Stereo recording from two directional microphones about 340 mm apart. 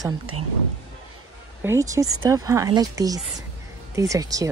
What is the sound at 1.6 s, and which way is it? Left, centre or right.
Speech, centre.